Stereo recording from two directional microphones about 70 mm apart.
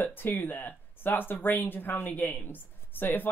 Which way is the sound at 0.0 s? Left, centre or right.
Left.